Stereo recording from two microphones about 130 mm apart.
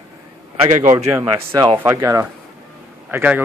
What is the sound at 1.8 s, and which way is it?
A man's voice, 20° right (ahead or behind).